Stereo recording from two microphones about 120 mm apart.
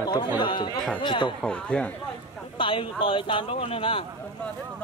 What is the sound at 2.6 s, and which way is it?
Speech, 45° left (ahead or behind).